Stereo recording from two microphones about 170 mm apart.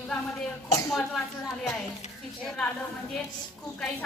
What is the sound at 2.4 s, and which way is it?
Speech, 5° left (ahead or behind).